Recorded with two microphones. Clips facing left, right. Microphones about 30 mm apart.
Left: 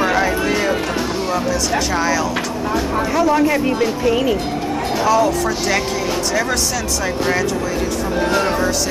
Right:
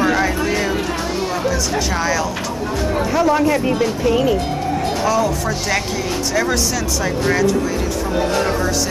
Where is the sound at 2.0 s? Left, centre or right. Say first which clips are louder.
Left 1 dB; centre.